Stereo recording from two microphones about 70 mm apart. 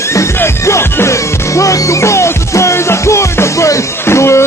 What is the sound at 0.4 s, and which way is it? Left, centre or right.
Music, left.